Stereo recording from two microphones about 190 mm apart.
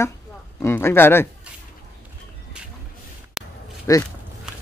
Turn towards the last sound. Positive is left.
turn(degrees=15)  # may be behind; listen again after turning